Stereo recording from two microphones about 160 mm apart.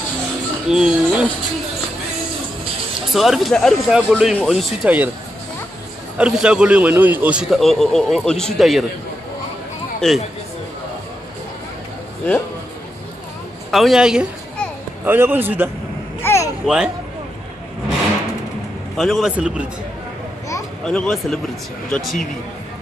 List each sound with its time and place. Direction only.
0.7 s a man's voice: 5° right (ahead or behind)
3.1 s a man's voice: centre (ahead or behind)
6.1 s a man's voice: 5° right (ahead or behind)
9.9 s speech: centre (ahead or behind)
13.7 s a man's voice: centre (ahead or behind)
16.2 s a sound: 15° left (ahead or behind)
16.6 s a man's voice: 5° right (ahead or behind)
18.9 s a man's voice: centre (ahead or behind)
20.8 s a man's voice: 5° left (ahead or behind)